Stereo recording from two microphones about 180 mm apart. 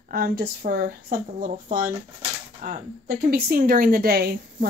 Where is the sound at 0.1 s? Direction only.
55° right (ahead or behind).